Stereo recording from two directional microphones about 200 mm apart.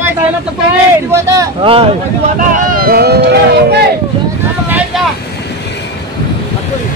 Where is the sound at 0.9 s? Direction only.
15° right (ahead or behind).